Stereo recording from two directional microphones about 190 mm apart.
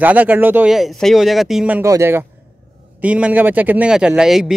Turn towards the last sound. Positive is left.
turn(degrees=0)  # may be behind; listen again after turning